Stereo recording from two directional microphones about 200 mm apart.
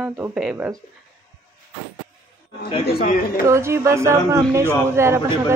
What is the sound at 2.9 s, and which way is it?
Speech, 50° left (ahead or behind).